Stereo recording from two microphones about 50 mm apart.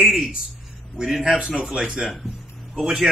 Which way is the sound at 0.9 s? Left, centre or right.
Centre.